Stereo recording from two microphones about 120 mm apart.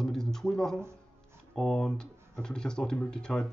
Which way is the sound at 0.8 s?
20° right (ahead or behind).